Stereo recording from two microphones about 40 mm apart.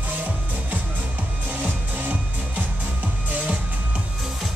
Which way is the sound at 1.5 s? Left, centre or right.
Right.